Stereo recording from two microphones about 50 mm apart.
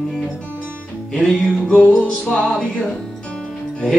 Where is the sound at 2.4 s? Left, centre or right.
Centre.